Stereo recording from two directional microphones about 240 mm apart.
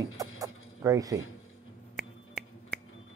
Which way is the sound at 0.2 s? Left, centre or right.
Centre.